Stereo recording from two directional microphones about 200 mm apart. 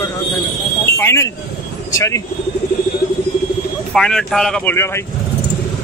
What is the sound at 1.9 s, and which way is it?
Speech, 15° left (ahead or behind).